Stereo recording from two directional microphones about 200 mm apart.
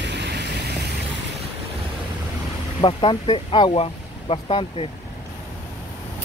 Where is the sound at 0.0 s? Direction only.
60° right (ahead or behind).